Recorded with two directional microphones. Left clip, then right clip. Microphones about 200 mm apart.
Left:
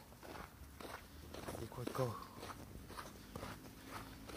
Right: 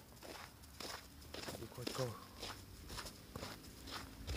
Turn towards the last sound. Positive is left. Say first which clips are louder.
# right 1 dB
turn(degrees=-15)  # may be behind; listen again after turning